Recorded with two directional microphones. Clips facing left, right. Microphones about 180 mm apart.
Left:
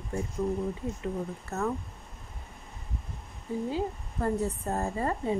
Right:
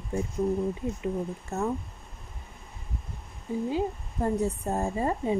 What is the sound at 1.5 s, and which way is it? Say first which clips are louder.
Speech: right 1 dB; 15° right (ahead or behind).